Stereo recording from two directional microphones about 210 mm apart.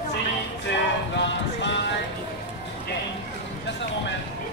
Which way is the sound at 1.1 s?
60° left (ahead or behind).